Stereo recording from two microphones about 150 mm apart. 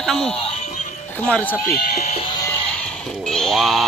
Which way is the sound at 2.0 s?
50° left (ahead or behind).